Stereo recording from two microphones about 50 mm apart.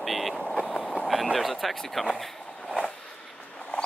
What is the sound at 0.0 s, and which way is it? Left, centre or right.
Vehicle, centre.